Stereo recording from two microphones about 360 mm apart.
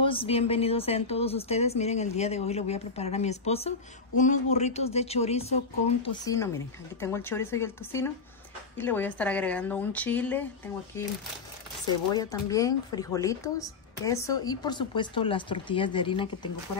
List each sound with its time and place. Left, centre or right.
0.0 s speech: centre
12.1 s speech: centre